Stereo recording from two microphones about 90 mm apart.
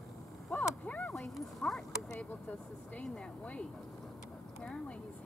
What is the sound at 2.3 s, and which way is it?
Vehicle, 20° left (ahead or behind).